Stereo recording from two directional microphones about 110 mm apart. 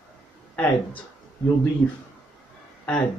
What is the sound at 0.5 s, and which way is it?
Speech, 15° left (ahead or behind).